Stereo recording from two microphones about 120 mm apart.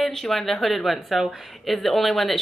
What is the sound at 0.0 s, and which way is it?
Speech, centre (ahead or behind).